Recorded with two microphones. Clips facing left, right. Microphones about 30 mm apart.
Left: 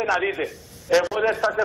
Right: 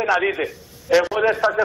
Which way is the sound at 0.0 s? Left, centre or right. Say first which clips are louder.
Right 3 dB; centre.